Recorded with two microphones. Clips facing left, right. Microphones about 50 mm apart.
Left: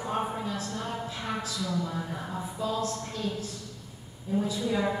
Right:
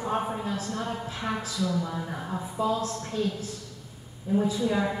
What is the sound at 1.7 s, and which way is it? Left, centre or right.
Speech, centre.